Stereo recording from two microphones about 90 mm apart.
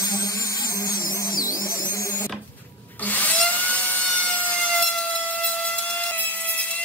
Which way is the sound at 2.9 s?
15° left (ahead or behind).